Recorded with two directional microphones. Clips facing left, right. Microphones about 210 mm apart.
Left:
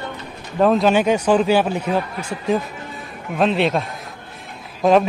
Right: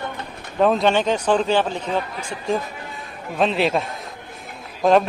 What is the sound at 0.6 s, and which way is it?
A man's voice, centre (ahead or behind).